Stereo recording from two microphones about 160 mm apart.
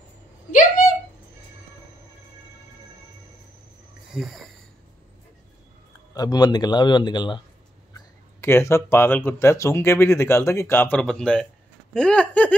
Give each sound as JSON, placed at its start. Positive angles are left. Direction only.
{"t": 0.5, "sound": "a sound", "side_deg": 55}
{"t": 4.1, "sound": "speech", "side_deg": 0}
{"t": 6.1, "sound": "a man's voice", "side_deg": 25}
{"t": 7.9, "sound": "speech", "side_deg": 15}